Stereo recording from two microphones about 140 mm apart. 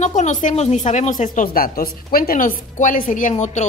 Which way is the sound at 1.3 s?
90° left.